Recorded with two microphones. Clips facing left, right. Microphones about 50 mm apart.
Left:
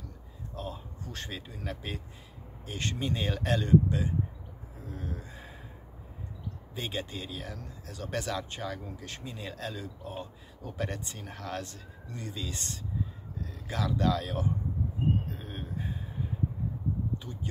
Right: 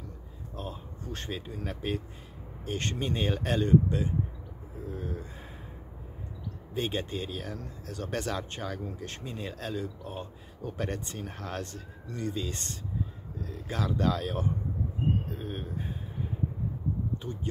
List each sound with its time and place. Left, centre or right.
0.6 s speech: right
6.7 s speech: right
13.7 s speech: right
15.3 s a sound: right